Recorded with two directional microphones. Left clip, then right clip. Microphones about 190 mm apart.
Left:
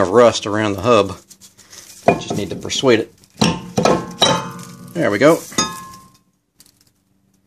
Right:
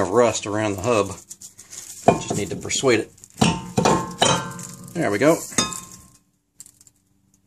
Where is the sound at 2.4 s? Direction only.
25° left (ahead or behind).